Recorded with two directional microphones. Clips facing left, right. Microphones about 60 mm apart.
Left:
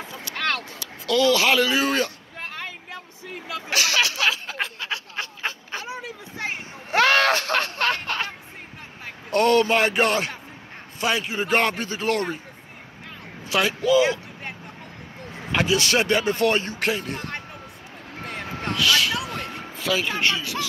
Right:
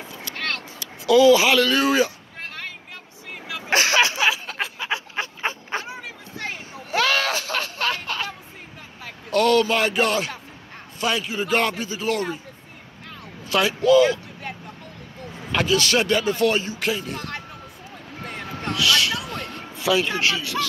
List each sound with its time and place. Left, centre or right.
1.0 s speech: centre
1.5 s speech: centre
1.9 s speech: centre
3.7 s a sound: right
4.7 s dog: right
6.3 s a sound: left
9.0 s a man's voice: left
13.6 s speech: centre
14.0 s vehicle: left
15.3 s a man's voice: left
18.2 s vehicle: left
18.8 s a sound: centre
19.8 s speech: centre